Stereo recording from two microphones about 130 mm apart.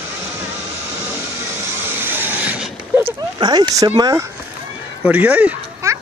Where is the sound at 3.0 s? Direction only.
35° right (ahead or behind).